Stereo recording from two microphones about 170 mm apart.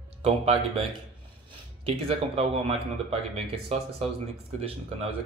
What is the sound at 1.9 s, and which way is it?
Speech, 35° right (ahead or behind).